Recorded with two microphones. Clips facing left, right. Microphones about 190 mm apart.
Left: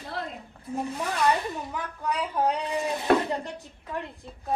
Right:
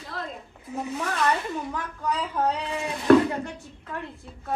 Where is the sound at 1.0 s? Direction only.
15° left (ahead or behind).